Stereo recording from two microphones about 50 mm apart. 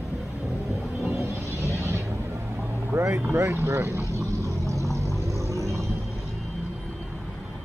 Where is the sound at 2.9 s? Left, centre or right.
Right.